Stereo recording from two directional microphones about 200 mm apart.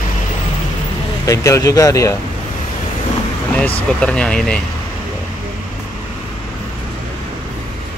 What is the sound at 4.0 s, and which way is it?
Speech, 5° left (ahead or behind).